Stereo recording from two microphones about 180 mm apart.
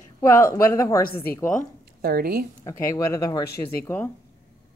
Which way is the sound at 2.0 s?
55° right (ahead or behind).